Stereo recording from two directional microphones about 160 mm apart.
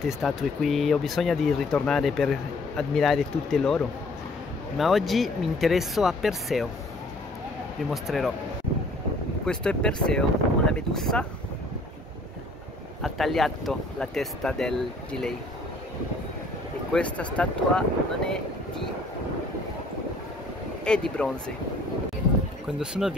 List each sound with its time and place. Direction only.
0.2 s speech: centre (ahead or behind)
7.9 s speech: centre (ahead or behind)
9.5 s speech: 5° left (ahead or behind)
13.0 s speech: centre (ahead or behind)
16.9 s speech: 10° left (ahead or behind)
20.8 s speech: 5° left (ahead or behind)
22.8 s speech: centre (ahead or behind)